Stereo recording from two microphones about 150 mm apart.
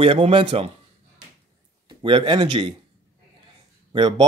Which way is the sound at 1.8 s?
35° right (ahead or behind).